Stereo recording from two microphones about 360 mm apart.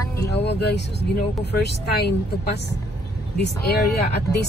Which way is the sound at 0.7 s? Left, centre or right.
Left.